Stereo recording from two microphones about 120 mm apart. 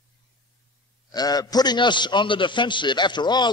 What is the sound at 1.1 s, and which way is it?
A man's voice, 35° left (ahead or behind).